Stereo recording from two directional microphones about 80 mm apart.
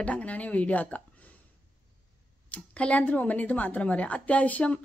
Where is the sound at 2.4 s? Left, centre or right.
Centre.